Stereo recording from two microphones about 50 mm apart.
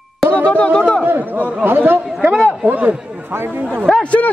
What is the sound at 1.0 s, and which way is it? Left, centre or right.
A man's voice, right.